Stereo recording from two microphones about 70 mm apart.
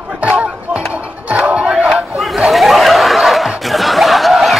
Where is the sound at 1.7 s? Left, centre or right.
Centre.